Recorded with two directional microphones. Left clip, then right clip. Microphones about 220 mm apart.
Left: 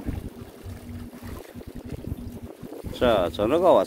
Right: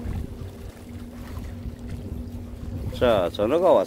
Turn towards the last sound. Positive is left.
turn(degrees=10)  # may be behind; listen again after turning